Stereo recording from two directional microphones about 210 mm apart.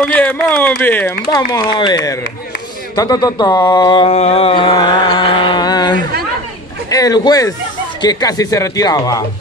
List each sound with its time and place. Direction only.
0.0 s speech: 5° left (ahead or behind)